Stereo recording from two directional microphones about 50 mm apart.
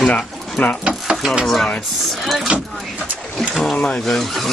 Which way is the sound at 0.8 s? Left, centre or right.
Centre.